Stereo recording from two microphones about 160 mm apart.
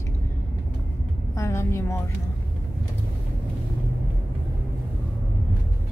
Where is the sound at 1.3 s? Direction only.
20° left (ahead or behind).